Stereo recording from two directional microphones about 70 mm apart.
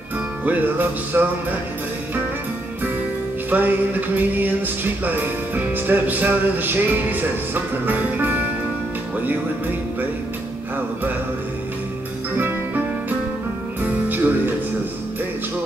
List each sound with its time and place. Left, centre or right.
0.5 s music: right
3.4 s music: right
12.4 s music: right
13.8 s music: right